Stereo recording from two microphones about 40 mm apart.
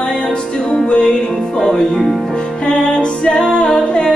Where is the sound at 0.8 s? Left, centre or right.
Left.